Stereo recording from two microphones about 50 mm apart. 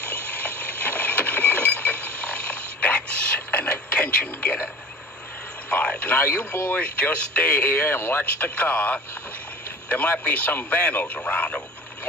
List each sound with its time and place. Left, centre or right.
0.4 s chink: left
3.3 s radio: left
5.7 s radio: left
6.5 s speech: left
6.8 s speech: left
7.6 s speech: left
8.5 s speech: left
11.2 s frog: left